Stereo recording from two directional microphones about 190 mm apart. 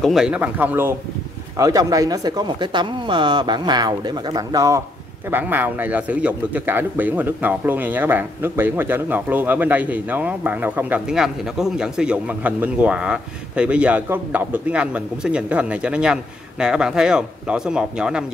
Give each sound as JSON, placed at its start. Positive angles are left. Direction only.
{"t": 0.0, "sound": "speech", "side_deg": 0}